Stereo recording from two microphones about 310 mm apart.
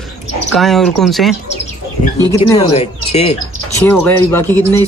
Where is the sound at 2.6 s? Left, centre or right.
Centre.